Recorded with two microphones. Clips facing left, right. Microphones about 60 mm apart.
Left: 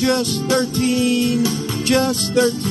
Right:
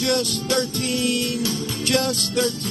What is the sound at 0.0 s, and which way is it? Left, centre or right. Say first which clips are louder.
Music: left 4 dB; left.